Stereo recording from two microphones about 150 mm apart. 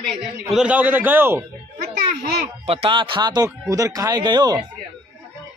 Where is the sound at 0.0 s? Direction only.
Centre (ahead or behind).